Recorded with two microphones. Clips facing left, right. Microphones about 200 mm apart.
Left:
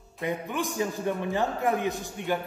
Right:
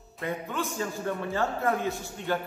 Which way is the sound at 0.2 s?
15° left (ahead or behind).